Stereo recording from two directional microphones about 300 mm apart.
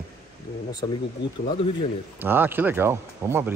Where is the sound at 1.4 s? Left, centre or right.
Centre.